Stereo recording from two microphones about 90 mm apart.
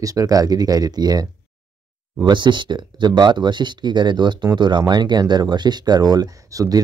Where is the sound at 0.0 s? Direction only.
40° right (ahead or behind).